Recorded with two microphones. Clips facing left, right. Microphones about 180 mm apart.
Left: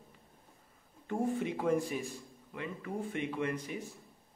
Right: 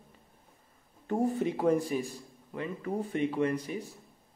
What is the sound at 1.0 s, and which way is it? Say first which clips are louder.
A man's voice: right 4 dB; 40° right (ahead or behind).